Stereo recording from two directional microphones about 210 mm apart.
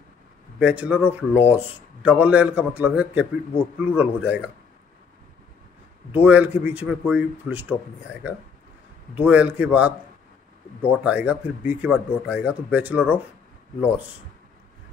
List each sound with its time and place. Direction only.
0.6 s speech: 5° right (ahead or behind)
6.1 s a man's voice: 5° right (ahead or behind)